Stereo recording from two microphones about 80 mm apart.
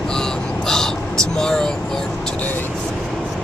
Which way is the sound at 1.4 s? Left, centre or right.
Centre.